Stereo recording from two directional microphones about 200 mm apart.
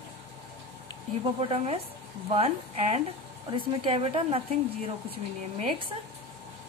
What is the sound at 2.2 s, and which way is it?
Speech, 30° right (ahead or behind).